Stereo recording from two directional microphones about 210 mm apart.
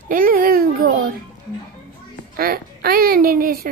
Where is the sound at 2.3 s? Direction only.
45° right (ahead or behind).